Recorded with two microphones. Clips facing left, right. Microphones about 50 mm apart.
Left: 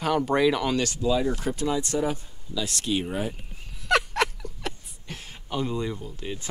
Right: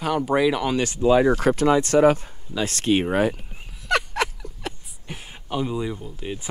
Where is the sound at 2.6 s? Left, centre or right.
Right.